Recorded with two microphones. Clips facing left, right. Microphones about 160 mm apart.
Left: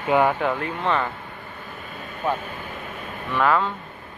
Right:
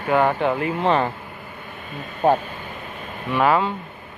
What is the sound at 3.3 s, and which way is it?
Speech, 15° right (ahead or behind).